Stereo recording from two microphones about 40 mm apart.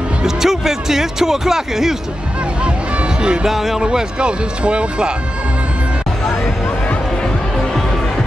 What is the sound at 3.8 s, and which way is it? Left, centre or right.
Speech, right.